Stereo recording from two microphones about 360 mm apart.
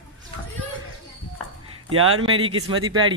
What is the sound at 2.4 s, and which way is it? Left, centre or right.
Speech, centre.